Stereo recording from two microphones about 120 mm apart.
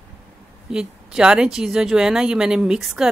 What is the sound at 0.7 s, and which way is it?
Speech, 5° right (ahead or behind).